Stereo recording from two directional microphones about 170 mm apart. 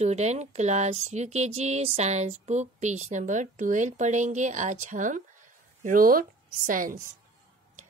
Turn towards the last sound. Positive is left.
turn(degrees=-50)  # may be behind; listen again after turning